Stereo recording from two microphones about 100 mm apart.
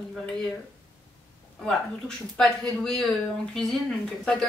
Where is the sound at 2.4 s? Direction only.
5° left (ahead or behind).